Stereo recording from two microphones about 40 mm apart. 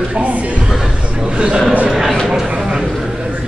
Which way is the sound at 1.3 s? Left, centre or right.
Right.